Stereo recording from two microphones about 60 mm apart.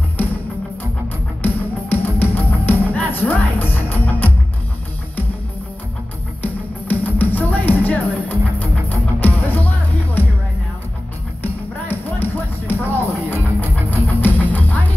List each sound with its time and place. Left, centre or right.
1.4 s music: left
6.4 s music: left
11.9 s music: left